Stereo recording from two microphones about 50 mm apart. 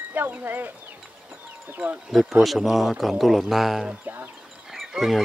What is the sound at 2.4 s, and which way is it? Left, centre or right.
Speech, centre.